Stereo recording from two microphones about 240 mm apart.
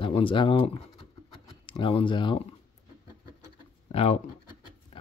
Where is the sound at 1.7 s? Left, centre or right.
Left.